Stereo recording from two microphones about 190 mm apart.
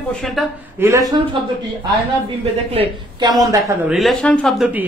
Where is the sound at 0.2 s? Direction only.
Centre (ahead or behind).